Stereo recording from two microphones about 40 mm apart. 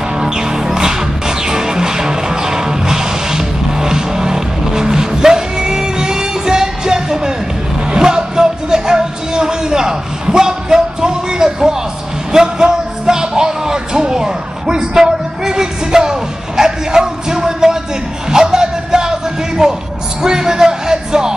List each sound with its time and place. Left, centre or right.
0.2 s music: centre